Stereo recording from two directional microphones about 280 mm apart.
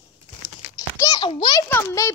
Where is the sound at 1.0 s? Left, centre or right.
Centre.